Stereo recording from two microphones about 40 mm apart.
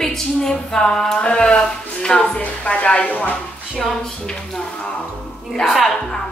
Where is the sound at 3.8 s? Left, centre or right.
Centre.